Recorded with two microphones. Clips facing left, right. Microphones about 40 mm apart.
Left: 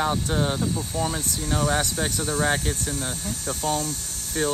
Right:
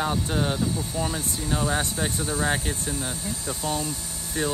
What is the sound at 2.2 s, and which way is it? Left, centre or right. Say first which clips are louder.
Speech: left 3 dB; left.